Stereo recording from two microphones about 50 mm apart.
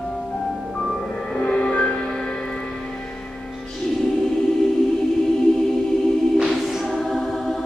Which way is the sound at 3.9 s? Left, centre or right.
Centre.